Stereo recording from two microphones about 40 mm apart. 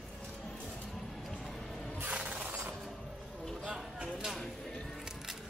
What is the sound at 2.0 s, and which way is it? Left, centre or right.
Music, right.